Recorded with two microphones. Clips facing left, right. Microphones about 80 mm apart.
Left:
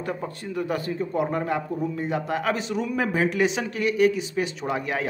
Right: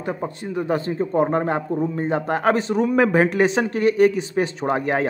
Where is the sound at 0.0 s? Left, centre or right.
Right.